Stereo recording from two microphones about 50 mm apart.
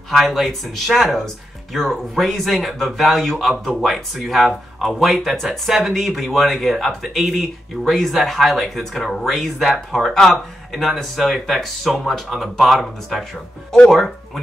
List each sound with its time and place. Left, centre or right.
0.1 s speech: centre
13.7 s speech: centre
13.9 s speech: centre